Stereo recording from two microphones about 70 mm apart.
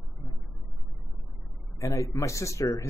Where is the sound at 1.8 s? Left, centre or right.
Left.